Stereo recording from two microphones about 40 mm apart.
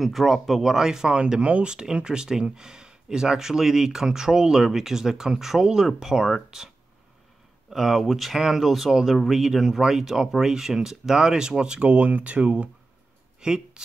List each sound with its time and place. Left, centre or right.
0.0 s speech: centre
1.4 s speech: right; by 6.3 s centre
7.7 s speech: centre; by 12.6 s right
13.4 s speech: centre